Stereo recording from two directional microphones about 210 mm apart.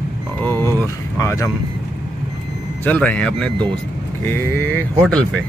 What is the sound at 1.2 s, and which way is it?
Speech, 15° left (ahead or behind).